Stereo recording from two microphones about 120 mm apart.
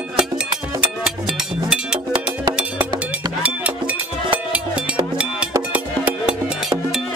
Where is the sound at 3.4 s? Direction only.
10° right (ahead or behind).